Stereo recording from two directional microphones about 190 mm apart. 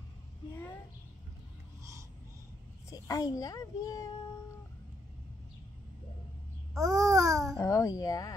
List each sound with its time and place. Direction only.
2.9 s a child's voice: 20° left (ahead or behind)
6.8 s babbling: 20° right (ahead or behind)
7.5 s a child's voice: 15° left (ahead or behind)